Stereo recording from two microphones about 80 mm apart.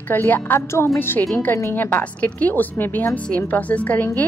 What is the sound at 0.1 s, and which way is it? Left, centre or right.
A woman's voice, left.